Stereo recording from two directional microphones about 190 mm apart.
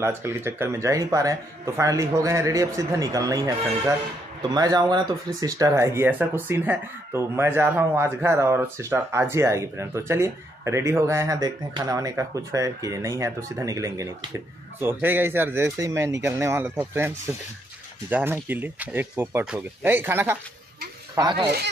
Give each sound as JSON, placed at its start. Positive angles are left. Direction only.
{"t": 0.0, "sound": "speech", "side_deg": -15}
{"t": 18.1, "sound": "speech", "side_deg": -10}